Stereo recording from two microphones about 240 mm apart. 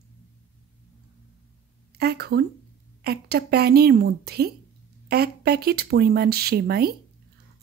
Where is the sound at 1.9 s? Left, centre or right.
Right.